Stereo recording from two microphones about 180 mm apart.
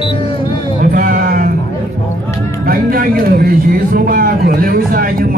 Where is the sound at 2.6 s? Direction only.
55° right (ahead or behind).